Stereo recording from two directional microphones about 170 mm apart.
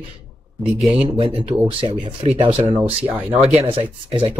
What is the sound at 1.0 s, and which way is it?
Speech, 35° right (ahead or behind).